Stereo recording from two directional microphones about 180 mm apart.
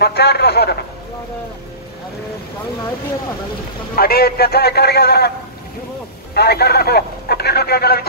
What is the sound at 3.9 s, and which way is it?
Speech, 60° left (ahead or behind).